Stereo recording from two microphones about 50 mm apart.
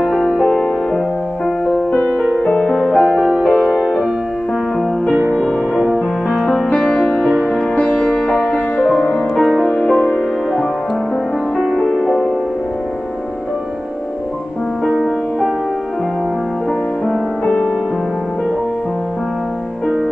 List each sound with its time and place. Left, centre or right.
0.4 s music: centre
2.3 s music: left
2.9 s music: centre
5.3 s music: centre
5.8 s music: centre
6.4 s music: centre
6.7 s music: centre
9.3 s music: centre
10.1 s music: centre
11.8 s music: centre
14.9 s music: centre